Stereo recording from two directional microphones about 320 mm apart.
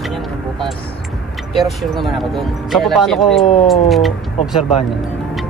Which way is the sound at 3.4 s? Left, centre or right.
Centre.